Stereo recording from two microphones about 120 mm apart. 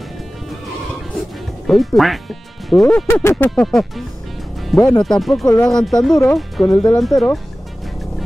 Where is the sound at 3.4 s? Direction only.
5° left (ahead or behind).